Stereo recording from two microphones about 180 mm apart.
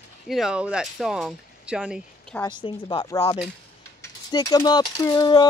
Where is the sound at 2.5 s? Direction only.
25° left (ahead or behind).